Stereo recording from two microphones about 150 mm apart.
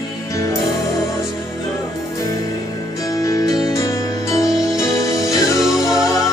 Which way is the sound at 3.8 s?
25° left (ahead or behind).